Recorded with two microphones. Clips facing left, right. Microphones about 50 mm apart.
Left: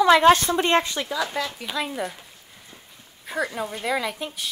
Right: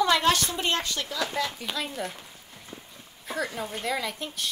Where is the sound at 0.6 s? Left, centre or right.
Left.